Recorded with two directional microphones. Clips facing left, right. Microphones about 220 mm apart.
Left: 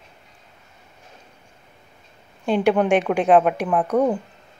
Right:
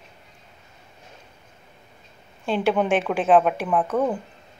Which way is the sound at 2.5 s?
Centre (ahead or behind).